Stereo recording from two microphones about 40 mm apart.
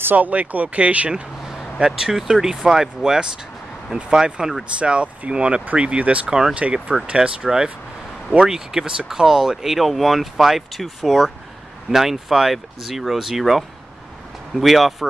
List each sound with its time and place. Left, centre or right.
0.0 s speech: right
1.9 s speech: centre